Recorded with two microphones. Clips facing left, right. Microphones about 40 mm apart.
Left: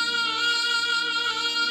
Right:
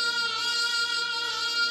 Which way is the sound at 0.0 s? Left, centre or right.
Left.